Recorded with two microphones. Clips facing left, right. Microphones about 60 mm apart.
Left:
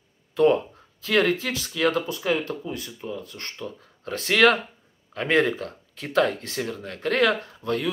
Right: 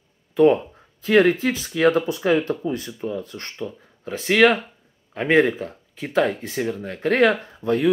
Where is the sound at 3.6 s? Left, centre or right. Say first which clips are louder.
Right 4 dB; centre.